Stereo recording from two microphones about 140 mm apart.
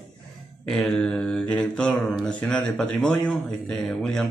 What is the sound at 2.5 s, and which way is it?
Speech, 5° left (ahead or behind).